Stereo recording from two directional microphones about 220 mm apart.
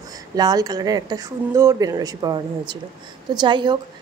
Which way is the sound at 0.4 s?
15° right (ahead or behind).